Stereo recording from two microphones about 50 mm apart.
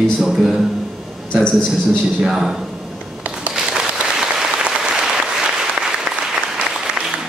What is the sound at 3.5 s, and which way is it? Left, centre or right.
Applause, centre.